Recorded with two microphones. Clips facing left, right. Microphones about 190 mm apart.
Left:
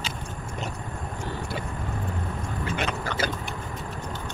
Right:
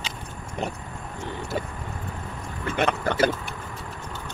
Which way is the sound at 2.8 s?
55° right (ahead or behind).